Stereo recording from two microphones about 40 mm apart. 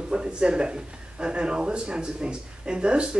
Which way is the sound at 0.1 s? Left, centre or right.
Right.